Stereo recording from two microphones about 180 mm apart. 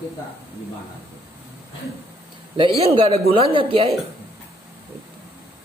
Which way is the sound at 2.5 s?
30° right (ahead or behind).